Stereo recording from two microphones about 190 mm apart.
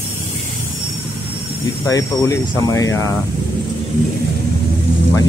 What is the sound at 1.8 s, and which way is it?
Speech, 15° left (ahead or behind).